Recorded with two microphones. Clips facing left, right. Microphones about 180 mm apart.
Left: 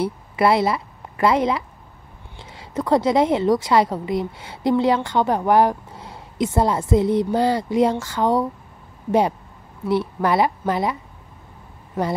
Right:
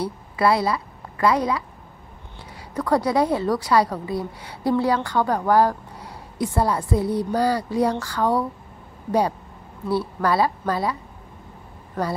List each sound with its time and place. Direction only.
0.0 s a woman's voice: 25° left (ahead or behind)
9.8 s a woman's voice: 20° left (ahead or behind)